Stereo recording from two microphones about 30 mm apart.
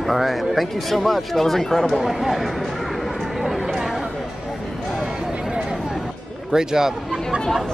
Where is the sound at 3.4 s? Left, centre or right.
Centre.